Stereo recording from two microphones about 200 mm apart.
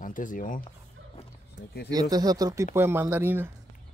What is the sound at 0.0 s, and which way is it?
Speech, 40° left (ahead or behind).